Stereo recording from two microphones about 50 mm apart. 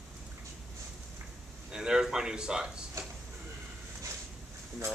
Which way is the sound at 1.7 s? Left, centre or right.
Centre.